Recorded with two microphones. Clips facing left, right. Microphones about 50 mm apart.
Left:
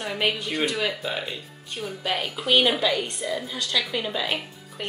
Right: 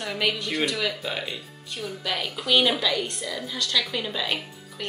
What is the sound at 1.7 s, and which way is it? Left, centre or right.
Speech, left.